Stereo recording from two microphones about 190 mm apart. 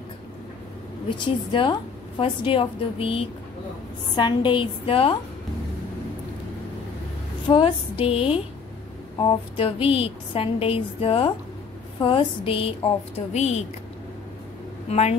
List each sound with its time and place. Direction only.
1.1 s a woman's voice: 25° left (ahead or behind)
7.4 s a woman's voice: 25° left (ahead or behind)
14.9 s a woman's voice: 35° left (ahead or behind)